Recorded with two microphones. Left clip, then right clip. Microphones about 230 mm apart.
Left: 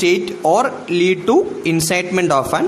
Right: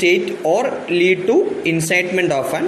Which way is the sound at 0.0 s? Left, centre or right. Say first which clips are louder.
Even; left.